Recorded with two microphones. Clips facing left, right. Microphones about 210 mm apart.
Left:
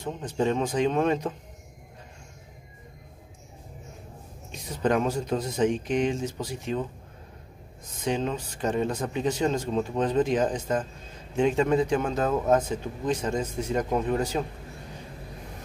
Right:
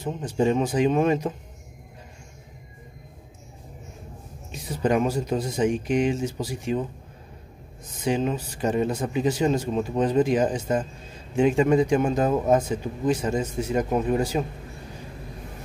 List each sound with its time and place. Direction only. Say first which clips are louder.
0.0 s a man's voice: right 3 dB; 10° right (ahead or behind)
4.5 s a man's voice: right 2 dB; 10° right (ahead or behind)
8.0 s a man's voice: right 3 dB; 10° right (ahead or behind)